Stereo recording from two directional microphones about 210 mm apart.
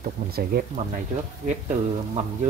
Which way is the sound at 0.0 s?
45° right (ahead or behind).